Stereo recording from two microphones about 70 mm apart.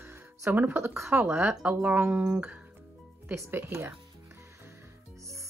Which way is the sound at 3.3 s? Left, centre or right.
Right.